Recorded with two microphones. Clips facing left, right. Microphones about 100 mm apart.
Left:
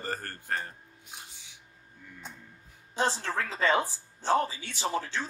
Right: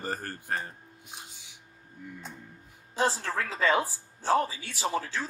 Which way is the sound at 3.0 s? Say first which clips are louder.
Right 1 dB; 10° right (ahead or behind).